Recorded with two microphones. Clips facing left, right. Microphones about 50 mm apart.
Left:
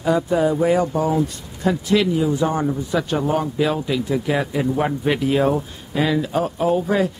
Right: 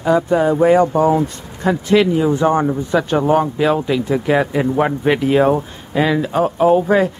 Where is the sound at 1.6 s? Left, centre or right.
Right.